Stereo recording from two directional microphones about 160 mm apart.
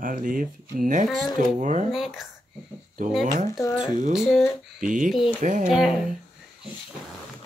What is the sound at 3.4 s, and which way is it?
Speech, 20° left (ahead or behind).